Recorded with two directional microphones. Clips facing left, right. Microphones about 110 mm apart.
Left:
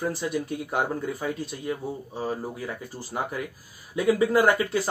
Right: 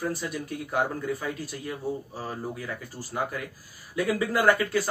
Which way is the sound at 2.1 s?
20° left (ahead or behind).